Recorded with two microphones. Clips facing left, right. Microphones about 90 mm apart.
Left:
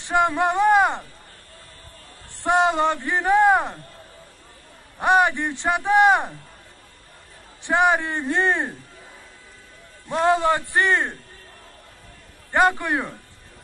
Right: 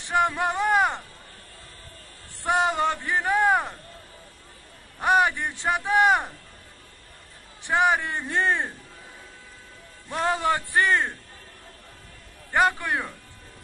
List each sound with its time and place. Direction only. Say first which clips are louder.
0.0 s a sound: left 3 dB; 25° left (ahead or behind)
2.4 s speech: left 4 dB; 25° left (ahead or behind)
4.9 s speech: left 3 dB; 25° left (ahead or behind)
7.6 s speech: left 3 dB; 25° left (ahead or behind)
10.0 s speech: left 5 dB; 25° left (ahead or behind)
12.5 s speech: left 3 dB; 20° left (ahead or behind)